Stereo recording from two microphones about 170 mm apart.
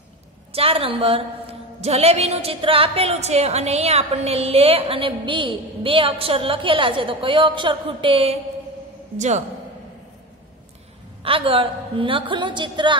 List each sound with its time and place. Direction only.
0.5 s a woman's voice: 35° right (ahead or behind)
11.2 s a woman's voice: 30° right (ahead or behind)